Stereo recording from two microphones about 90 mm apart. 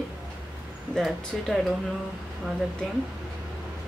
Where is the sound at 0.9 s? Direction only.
Centre (ahead or behind).